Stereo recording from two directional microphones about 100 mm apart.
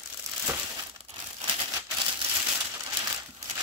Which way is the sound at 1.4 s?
60° right (ahead or behind).